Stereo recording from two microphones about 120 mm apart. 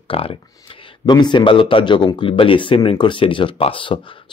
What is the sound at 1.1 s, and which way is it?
Speech, 40° left (ahead or behind).